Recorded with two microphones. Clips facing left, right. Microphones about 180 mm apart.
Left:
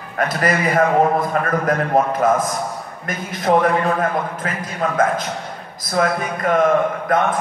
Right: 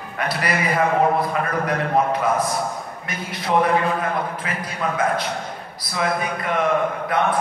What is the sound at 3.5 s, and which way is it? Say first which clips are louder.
A man's voice: left 3 dB; 55° left (ahead or behind).